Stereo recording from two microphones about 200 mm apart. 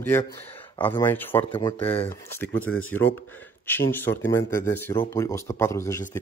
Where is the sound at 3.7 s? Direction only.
10° left (ahead or behind).